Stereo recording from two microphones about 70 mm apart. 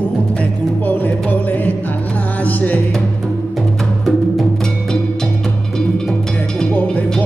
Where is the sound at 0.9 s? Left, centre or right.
Left.